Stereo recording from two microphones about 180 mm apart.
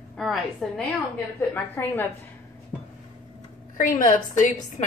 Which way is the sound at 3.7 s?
50° left (ahead or behind).